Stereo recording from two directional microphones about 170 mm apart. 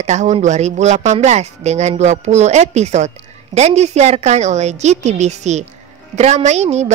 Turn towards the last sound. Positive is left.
turn(degrees=-40)  # may be behind; listen again after turning